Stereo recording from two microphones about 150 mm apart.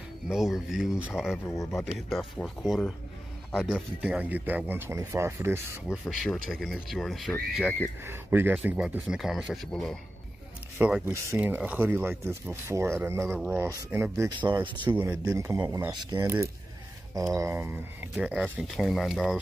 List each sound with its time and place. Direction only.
0.3 s speech: centre (ahead or behind); by 5.8 s 15° right (ahead or behind)
5.9 s speech: centre (ahead or behind)
8.0 s speech: 15° right (ahead or behind); by 9.9 s 5° left (ahead or behind)
10.8 s speech: 15° right (ahead or behind)
14.4 s speech: 30° right (ahead or behind)
14.9 s a man's voice: 10° right (ahead or behind)
18.1 s speech: centre (ahead or behind)